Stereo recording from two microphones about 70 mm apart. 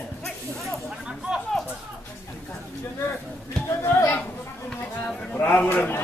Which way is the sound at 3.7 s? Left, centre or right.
Left.